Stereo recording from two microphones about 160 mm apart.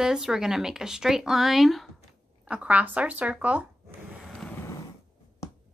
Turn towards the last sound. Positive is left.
turn(degrees=15)  # may be behind; listen again after turning